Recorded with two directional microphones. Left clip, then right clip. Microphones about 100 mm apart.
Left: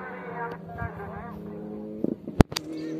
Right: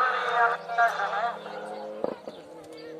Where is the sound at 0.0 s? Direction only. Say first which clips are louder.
Right 12 dB; 45° right (ahead or behind).